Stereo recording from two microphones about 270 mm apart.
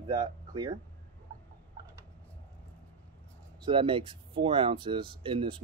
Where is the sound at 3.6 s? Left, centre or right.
Centre.